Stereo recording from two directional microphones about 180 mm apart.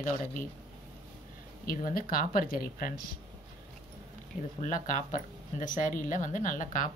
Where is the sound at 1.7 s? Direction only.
50° left (ahead or behind).